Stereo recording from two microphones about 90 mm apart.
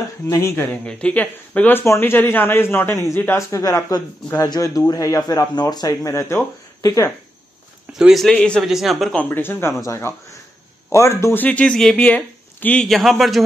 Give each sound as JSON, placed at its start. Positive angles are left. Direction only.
{"t": 0.3, "sound": "speech", "side_deg": 30}
{"t": 0.7, "sound": "speech", "side_deg": 10}
{"t": 8.1, "sound": "a man's voice", "side_deg": 0}
{"t": 8.6, "sound": "a man's voice", "side_deg": 0}
{"t": 9.1, "sound": "speech", "side_deg": 20}
{"t": 11.4, "sound": "speech", "side_deg": 15}
{"t": 12.8, "sound": "a man's voice", "side_deg": 0}